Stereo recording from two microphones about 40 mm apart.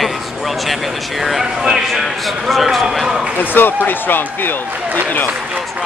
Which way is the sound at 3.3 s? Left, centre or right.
Left.